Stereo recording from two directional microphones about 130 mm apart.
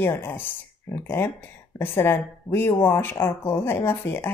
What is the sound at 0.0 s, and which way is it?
A woman's voice, 15° left (ahead or behind).